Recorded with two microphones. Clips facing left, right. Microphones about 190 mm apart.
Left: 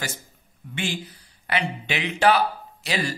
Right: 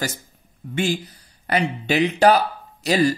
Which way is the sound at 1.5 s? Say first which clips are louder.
Right 6 dB; 40° right (ahead or behind).